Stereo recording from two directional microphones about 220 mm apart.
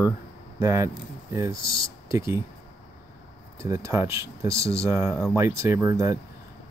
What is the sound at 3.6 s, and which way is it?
Speech, 15° right (ahead or behind).